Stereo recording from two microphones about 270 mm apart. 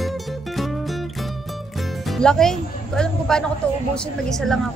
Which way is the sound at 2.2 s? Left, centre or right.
Centre.